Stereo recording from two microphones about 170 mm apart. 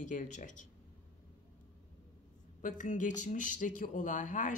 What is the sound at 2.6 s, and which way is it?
Speech, 45° left (ahead or behind).